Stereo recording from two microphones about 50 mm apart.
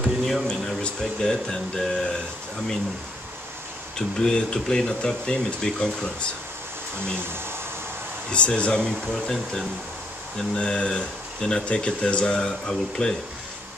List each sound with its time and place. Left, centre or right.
0.0 s a sound: centre
0.8 s speech: centre
4.2 s speech: centre
7.2 s speech: right
8.3 s speech: left
10.5 s speech: centre